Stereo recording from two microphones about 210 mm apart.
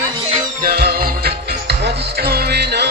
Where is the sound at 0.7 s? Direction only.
45° right (ahead or behind).